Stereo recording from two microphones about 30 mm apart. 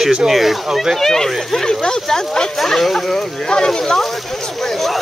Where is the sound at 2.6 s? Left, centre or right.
Centre.